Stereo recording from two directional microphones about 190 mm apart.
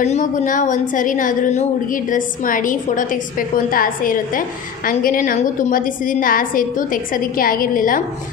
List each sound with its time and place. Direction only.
0.0 s a woman's voice: 40° left (ahead or behind)